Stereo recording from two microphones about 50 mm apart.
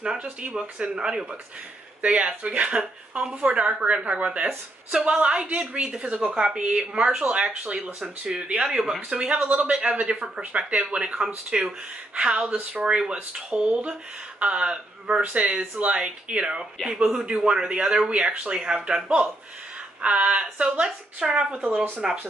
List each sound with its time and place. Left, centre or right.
0.0 s speech: centre
2.0 s a woman's voice: right
2.8 s a woman's voice: centre; by 9.8 s right
10.1 s speech: centre
10.7 s a woman's voice: right
12.8 s a woman's voice: centre
16.8 s speech: centre
17.5 s a woman's voice: right
18.9 s speech: centre
20.0 s a woman's voice: right
22.0 s speech: centre